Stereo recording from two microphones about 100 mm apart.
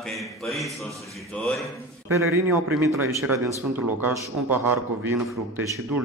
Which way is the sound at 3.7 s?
20° right (ahead or behind).